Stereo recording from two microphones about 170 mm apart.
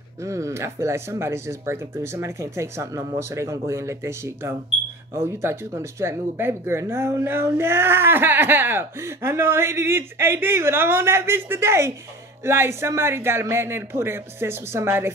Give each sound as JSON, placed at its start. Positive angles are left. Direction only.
{"t": 0.2, "sound": "speech", "side_deg": -15}